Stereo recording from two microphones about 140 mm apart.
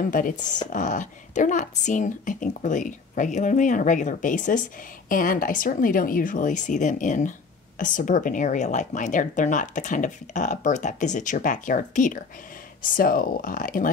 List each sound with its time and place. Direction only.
0.1 s a woman's voice: 75° left (ahead or behind)
5.1 s a woman's voice: 80° left
12.8 s speech: 80° left